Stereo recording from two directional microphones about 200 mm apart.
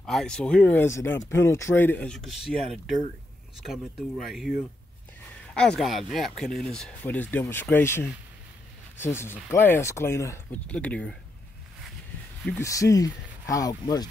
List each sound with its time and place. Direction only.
0.0 s speech: 5° left (ahead or behind)
12.4 s speech: 15° left (ahead or behind)